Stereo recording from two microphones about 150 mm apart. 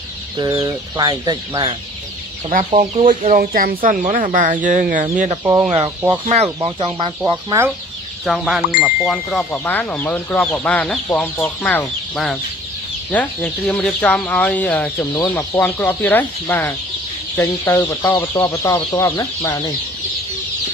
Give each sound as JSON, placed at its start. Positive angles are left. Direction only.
{"t": 0.4, "sound": "speech", "side_deg": -25}
{"t": 2.5, "sound": "speech", "side_deg": -55}
{"t": 5.4, "sound": "speech", "side_deg": -15}
{"t": 6.2, "sound": "speech", "side_deg": -45}
{"t": 8.3, "sound": "speech", "side_deg": -5}
{"t": 13.1, "sound": "speech", "side_deg": 10}